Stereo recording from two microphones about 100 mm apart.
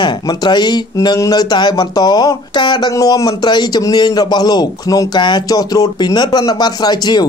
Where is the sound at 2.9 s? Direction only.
35° left (ahead or behind).